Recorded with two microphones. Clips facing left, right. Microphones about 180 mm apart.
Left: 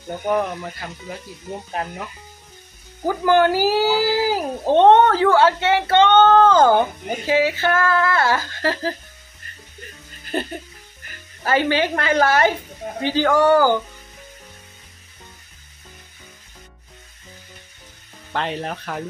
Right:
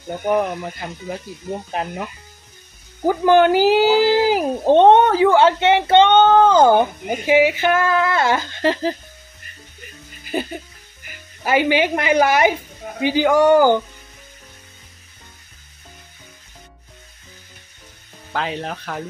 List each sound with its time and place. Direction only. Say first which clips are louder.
0.3 s speech: right 2 dB; 15° right (ahead or behind)
3.1 s speech: right 3 dB; 20° right (ahead or behind)
10.2 s music: right 1 dB; 5° right (ahead or behind)
13.0 s speech: right 2 dB; 15° right (ahead or behind)
18.3 s speech: even; centre (ahead or behind)